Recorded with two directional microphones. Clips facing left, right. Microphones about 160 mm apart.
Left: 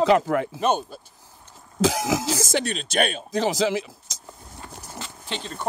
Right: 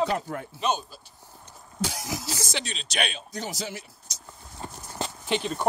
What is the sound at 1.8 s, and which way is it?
Speech, 90° left.